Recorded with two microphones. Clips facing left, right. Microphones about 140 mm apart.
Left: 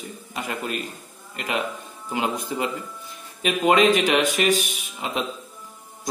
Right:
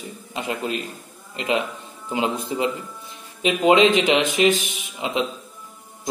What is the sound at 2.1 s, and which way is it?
Speech, 20° right (ahead or behind).